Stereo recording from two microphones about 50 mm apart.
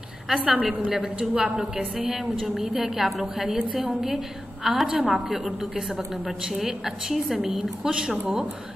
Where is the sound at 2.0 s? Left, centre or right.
Centre.